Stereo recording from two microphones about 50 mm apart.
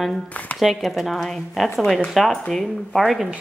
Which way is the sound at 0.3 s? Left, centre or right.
Left.